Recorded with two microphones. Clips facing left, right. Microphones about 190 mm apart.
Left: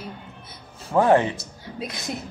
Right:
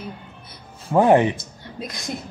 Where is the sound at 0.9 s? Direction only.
15° right (ahead or behind).